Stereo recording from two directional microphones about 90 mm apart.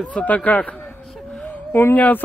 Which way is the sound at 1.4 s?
25° left (ahead or behind).